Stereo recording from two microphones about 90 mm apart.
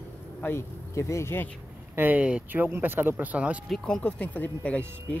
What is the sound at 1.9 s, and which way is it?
Speech, 20° right (ahead or behind).